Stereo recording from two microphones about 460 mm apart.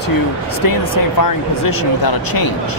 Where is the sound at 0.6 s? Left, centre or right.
Left.